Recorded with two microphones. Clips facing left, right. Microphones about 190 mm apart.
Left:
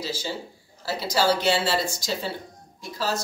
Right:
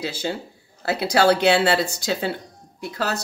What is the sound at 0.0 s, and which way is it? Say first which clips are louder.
Speech: right 4 dB; 60° right (ahead or behind).